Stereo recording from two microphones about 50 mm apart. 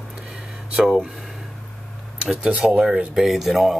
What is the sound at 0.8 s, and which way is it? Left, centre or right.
Speech, centre.